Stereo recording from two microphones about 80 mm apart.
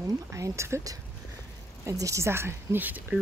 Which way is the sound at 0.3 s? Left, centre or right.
Right.